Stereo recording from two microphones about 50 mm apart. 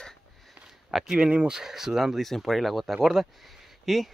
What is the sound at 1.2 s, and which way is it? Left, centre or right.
Speech, right.